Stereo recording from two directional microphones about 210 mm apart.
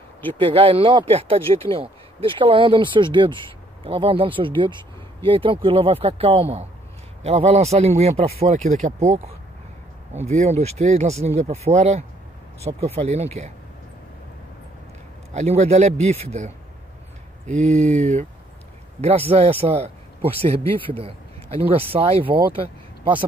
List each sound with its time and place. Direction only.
0.4 s a man's voice: 25° right (ahead or behind)
10.1 s a man's voice: 30° right (ahead or behind)
15.3 s a man's voice: 30° right (ahead or behind)